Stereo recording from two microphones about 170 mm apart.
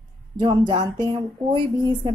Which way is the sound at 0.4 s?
25° right (ahead or behind).